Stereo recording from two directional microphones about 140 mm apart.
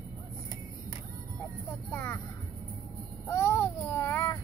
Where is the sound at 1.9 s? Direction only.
15° left (ahead or behind).